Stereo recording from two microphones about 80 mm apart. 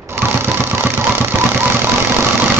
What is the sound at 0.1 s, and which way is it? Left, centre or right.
Vehicle, right.